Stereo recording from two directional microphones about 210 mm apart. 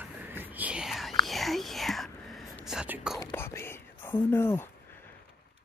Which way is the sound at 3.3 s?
10° left (ahead or behind).